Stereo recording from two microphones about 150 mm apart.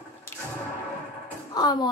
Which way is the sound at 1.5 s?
25° left (ahead or behind).